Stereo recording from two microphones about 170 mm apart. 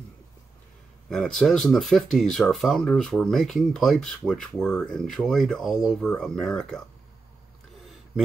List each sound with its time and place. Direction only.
1.0 s speech: centre (ahead or behind)